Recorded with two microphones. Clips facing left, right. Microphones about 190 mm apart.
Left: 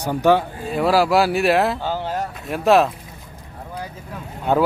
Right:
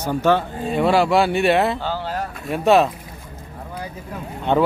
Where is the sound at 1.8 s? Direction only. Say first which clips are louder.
Left 1 dB; 15° left (ahead or behind).